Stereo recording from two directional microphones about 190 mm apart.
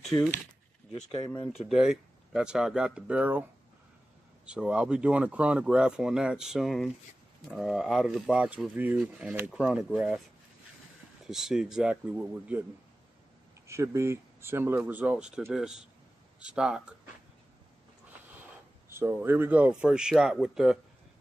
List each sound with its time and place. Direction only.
0.1 s speech: 20° left (ahead or behind)
1.7 s speech: 5° right (ahead or behind)
4.5 s speech: 5° right (ahead or behind)
11.2 s speech: 5° right (ahead or behind)
13.7 s speech: 15° right (ahead or behind)
18.9 s speech: 15° right (ahead or behind)